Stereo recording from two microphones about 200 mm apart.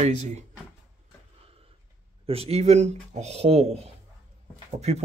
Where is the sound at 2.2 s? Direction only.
30° right (ahead or behind).